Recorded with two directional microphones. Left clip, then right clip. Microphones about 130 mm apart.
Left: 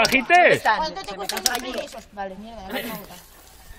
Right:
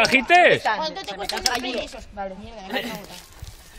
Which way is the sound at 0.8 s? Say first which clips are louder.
Even; 45° right (ahead or behind).